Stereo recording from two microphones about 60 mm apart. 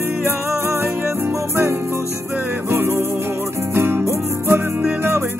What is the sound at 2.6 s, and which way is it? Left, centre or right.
Music, right.